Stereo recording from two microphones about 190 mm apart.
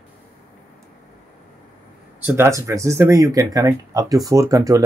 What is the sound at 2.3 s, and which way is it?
Speech, 15° right (ahead or behind).